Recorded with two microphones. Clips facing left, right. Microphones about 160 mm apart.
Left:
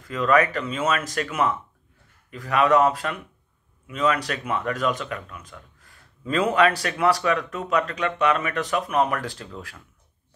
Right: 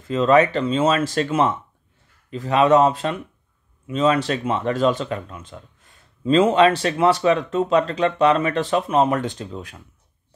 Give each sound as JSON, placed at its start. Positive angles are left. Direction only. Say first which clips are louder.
{"t": 0.0, "sound": "speech", "louder": "right 5 dB", "side_deg": -25}